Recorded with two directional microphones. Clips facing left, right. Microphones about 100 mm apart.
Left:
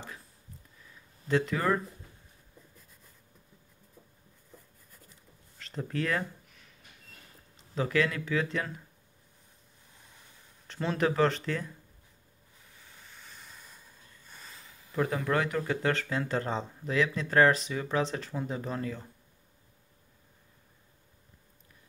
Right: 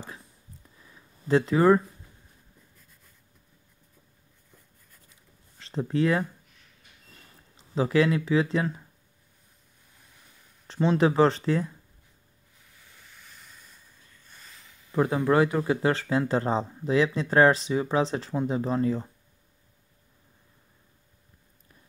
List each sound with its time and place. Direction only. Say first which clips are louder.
1.2 s speech: right 8 dB; 35° right (ahead or behind)
5.6 s speech: right 8 dB; 30° right (ahead or behind)
7.7 s speech: right 6 dB; 30° right (ahead or behind)
10.7 s speech: right 6 dB; 30° right (ahead or behind)
14.9 s speech: right 6 dB; 30° right (ahead or behind)